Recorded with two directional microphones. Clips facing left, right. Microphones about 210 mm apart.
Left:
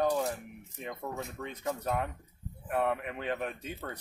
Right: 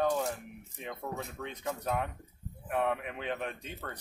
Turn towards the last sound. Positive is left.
turn(degrees=5)  # may be behind; listen again after turning